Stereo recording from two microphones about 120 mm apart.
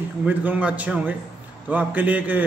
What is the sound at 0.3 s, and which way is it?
A man's voice, 15° right (ahead or behind).